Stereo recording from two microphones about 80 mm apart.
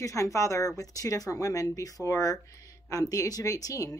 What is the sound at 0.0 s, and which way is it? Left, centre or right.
Speech, left.